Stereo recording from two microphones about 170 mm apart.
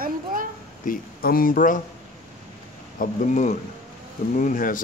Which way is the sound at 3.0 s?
45° left (ahead or behind).